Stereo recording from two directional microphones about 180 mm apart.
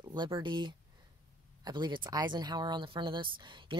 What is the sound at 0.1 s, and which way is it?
Speech, 25° right (ahead or behind).